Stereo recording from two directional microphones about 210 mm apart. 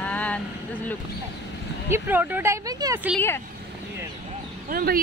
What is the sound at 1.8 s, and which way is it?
Speech, 10° right (ahead or behind).